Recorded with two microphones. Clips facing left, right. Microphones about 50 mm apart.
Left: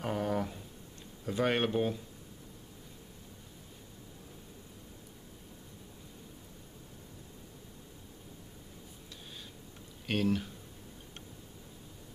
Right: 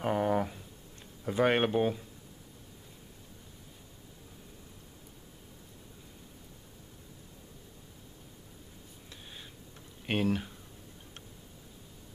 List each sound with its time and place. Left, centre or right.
0.0 s a sound: centre
1.2 s speech: centre
10.0 s speech: right